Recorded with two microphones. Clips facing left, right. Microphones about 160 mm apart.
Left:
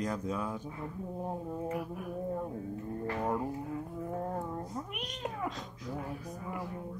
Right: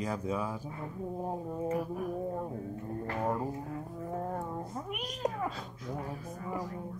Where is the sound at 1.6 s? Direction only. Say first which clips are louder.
Right 4 dB; 40° right (ahead or behind).